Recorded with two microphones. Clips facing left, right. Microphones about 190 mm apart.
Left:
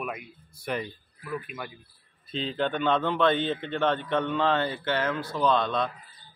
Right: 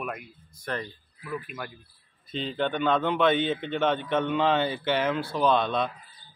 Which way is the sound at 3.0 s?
15° right (ahead or behind).